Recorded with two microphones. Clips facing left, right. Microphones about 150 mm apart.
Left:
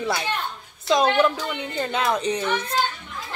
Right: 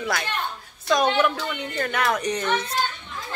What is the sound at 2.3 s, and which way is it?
Speech, 10° left (ahead or behind).